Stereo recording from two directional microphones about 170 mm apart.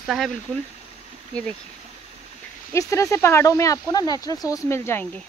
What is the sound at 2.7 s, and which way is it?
Speech, 20° left (ahead or behind).